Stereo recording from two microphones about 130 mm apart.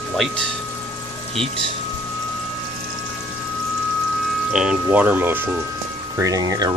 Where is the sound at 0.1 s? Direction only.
5° left (ahead or behind).